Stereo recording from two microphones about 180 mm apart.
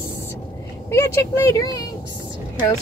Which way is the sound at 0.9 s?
15° left (ahead or behind).